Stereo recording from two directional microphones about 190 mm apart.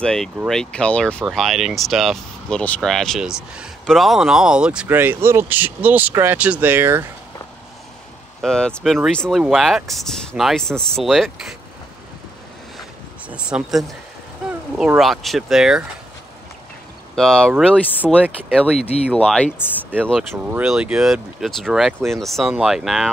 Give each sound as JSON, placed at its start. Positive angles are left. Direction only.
{"t": 0.0, "sound": "speech", "side_deg": 5}
{"t": 8.4, "sound": "speech", "side_deg": 5}
{"t": 13.3, "sound": "speech", "side_deg": -5}
{"t": 17.1, "sound": "speech", "side_deg": 5}
{"t": 18.8, "sound": "speech", "side_deg": 35}
{"t": 20.1, "sound": "speech", "side_deg": -5}